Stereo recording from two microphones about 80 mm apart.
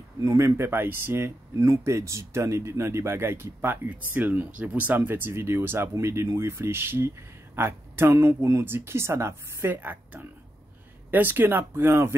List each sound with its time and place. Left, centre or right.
0.2 s speech: right
9.8 s speech: right